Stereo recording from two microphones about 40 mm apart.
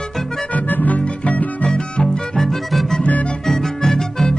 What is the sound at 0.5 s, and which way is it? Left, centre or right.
Music, left.